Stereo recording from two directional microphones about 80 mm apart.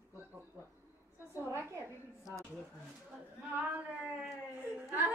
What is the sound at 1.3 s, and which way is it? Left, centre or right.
Speech, right.